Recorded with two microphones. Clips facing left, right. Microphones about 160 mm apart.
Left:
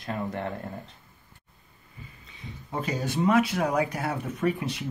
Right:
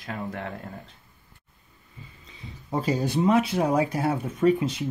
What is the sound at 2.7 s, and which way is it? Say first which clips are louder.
Speech: right 5 dB; 30° right (ahead or behind).